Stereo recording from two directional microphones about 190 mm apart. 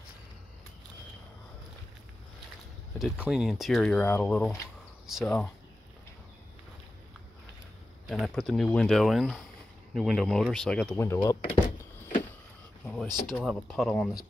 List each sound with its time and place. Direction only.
3.0 s speech: centre (ahead or behind)
5.0 s speech: centre (ahead or behind)
8.4 s speech: centre (ahead or behind)
11.1 s speech: 25° left (ahead or behind)
12.8 s speech: centre (ahead or behind)